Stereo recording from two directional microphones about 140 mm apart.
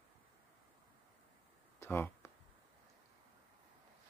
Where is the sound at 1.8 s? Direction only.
15° left (ahead or behind).